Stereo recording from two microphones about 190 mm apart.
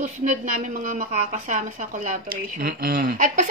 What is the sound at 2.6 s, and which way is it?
Speech, 55° right (ahead or behind).